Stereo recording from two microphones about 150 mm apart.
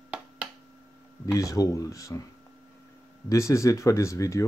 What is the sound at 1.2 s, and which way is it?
Speech, 20° left (ahead or behind).